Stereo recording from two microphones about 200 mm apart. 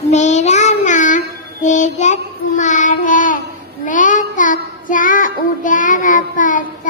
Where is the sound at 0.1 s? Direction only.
35° left (ahead or behind).